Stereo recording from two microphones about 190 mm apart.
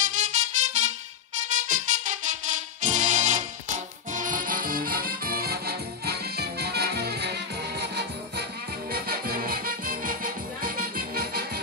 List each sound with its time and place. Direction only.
0.0 s music: 40° right (ahead or behind)